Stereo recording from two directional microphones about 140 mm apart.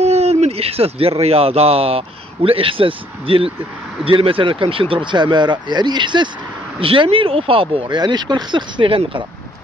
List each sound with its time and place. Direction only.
0.0 s speech: 50° right (ahead or behind)